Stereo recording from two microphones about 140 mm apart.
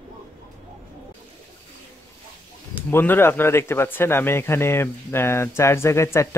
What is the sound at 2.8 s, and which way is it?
Speech, 15° left (ahead or behind).